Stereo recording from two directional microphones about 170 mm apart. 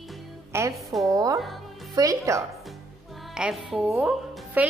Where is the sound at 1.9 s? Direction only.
20° right (ahead or behind).